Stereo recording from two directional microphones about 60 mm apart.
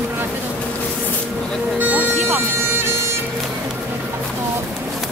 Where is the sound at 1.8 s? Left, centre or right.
Right.